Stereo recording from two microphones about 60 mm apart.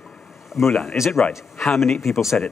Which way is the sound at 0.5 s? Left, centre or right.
Centre.